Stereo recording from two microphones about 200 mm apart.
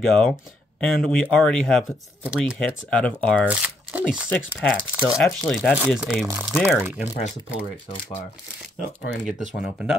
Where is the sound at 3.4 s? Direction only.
5° right (ahead or behind).